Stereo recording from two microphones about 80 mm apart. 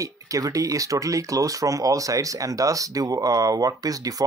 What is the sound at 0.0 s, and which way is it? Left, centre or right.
Speech, right.